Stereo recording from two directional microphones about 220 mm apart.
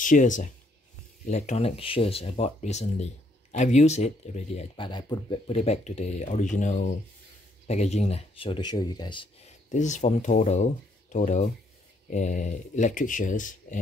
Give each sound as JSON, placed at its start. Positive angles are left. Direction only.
{"t": 0.0, "sound": "speech", "side_deg": 35}
{"t": 9.7, "sound": "speech", "side_deg": 35}